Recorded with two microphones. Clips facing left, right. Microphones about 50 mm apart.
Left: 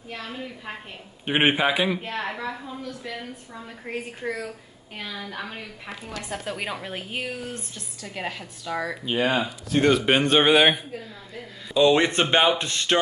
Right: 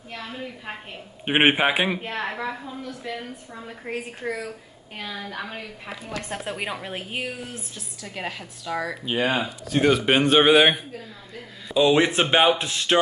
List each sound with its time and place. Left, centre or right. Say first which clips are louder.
0.1 s a woman's voice: even; centre
1.2 s a man's voice: right 2 dB; right
2.0 s a woman's voice: right 1 dB; centre
6.0 s speech: right 2 dB; right
6.4 s a woman's voice: right 1 dB; centre